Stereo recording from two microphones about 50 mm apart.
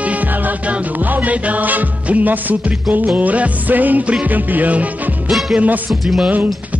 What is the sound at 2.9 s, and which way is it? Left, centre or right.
Speech, right.